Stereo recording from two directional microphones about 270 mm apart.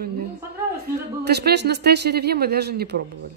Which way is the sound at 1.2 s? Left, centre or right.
Right.